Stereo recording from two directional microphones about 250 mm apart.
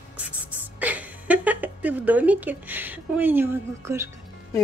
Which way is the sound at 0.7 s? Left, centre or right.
Centre.